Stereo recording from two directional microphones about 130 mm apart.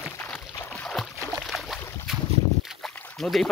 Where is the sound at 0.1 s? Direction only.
20° left (ahead or behind).